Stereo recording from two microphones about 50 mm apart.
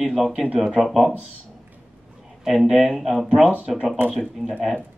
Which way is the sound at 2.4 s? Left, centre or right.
Centre.